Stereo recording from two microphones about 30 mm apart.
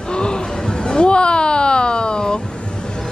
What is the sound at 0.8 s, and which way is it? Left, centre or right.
Vehicle, left.